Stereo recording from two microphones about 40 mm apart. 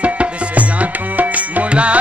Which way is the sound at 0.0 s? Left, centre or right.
Right.